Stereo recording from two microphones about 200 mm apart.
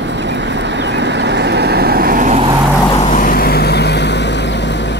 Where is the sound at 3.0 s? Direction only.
40° left (ahead or behind).